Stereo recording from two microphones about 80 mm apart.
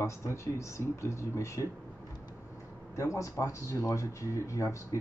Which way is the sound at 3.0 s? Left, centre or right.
Left.